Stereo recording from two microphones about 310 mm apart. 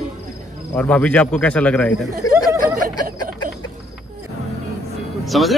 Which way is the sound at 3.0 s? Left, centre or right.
Right.